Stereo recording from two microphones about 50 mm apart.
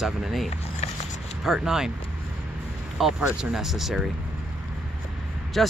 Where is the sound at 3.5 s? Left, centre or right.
Centre.